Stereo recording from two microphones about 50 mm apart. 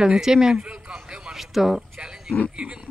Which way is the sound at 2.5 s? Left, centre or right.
Centre.